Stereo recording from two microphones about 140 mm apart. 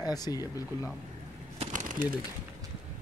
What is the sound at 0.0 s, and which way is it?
Speech, 25° left (ahead or behind).